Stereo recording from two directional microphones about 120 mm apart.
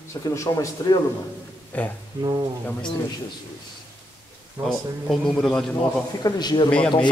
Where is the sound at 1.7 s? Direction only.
10° left (ahead or behind).